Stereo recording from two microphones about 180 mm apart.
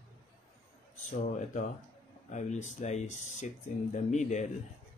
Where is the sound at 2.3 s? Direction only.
40° left (ahead or behind).